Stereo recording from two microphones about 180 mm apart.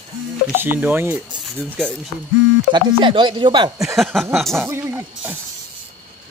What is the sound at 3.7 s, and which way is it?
Speech, centre (ahead or behind).